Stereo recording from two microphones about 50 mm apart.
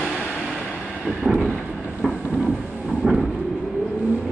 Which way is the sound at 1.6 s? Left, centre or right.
Right.